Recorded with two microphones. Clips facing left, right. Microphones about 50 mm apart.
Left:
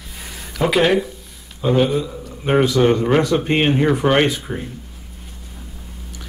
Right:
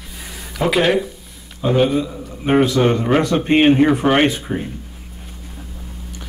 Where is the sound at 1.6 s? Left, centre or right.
Centre.